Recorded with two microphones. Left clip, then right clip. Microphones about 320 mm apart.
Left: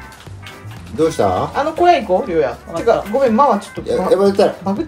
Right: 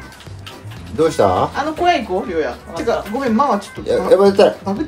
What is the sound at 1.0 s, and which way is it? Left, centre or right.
Speech, centre.